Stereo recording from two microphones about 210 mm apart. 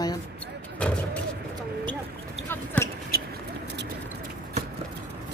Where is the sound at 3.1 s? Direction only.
45° right (ahead or behind).